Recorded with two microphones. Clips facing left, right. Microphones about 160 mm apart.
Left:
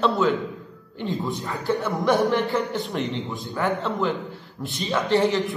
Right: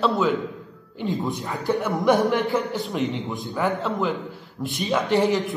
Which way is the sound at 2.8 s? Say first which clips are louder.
Right 1 dB; centre (ahead or behind).